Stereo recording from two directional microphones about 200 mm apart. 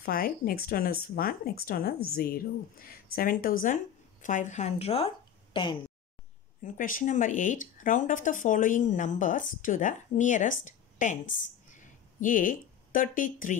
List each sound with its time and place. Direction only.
0.0 s speech: 45° left (ahead or behind); by 5.8 s 25° left (ahead or behind)
6.6 s speech: 40° left (ahead or behind)